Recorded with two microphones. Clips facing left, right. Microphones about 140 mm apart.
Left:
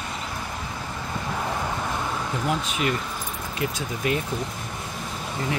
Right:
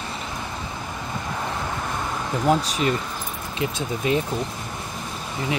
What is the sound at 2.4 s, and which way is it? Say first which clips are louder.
Speech: right 6 dB; 40° right (ahead or behind).